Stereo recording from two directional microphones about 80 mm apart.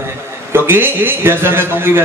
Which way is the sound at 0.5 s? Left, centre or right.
Right.